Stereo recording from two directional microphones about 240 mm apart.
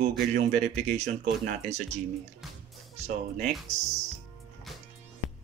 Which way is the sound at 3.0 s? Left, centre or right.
Right.